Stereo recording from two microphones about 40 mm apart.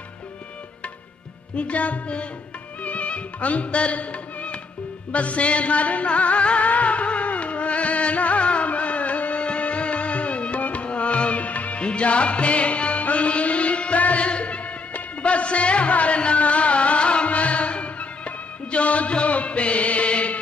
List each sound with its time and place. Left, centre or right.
1.6 s music: left